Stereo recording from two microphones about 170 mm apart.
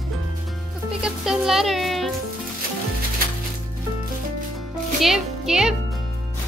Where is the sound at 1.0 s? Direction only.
5° right (ahead or behind).